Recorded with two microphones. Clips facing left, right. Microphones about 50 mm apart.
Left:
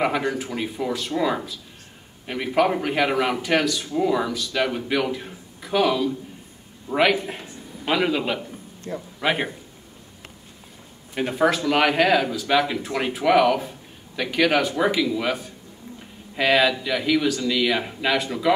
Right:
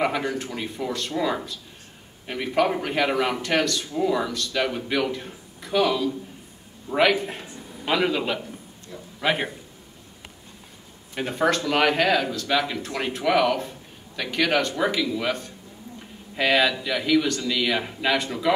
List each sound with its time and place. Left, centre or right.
0.0 s a man's voice: centre
8.9 s a man's voice: left
9.2 s speech: centre
11.1 s speech: centre